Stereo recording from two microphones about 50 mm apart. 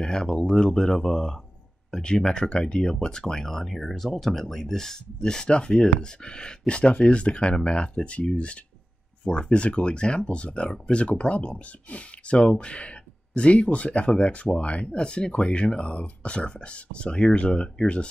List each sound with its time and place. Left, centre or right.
0.0 s speech: centre